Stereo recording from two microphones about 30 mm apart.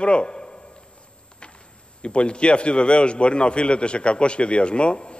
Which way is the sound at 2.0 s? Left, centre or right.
Left.